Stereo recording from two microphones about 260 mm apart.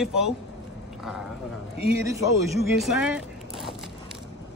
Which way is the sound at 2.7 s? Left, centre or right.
Centre.